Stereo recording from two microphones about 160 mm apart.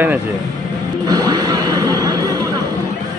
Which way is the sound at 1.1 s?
25° right (ahead or behind).